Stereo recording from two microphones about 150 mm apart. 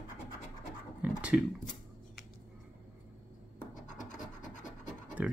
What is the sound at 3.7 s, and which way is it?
Scratch, 60° left (ahead or behind).